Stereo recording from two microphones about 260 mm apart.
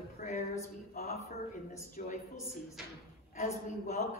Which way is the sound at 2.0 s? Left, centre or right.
Left.